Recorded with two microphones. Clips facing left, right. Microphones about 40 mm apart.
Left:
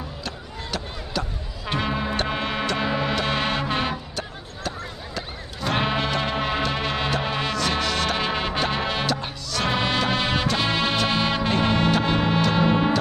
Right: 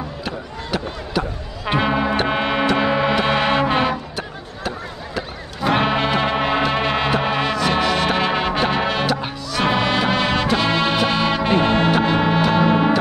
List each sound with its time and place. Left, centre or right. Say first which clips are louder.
0.2 s a sound: right 6 dB; centre
1.8 s music: right 7 dB; right
4.2 s a sound: right 4 dB; centre
5.8 s music: right 4 dB; right
6.2 s music: right 6 dB; right
7.7 s music: right 6 dB; centre
11.1 s music: right 4 dB; centre
11.4 s music: right 6 dB; right
12.4 s music: right 4 dB; centre